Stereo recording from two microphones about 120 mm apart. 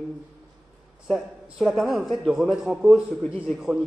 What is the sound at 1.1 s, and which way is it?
A man's voice, centre (ahead or behind).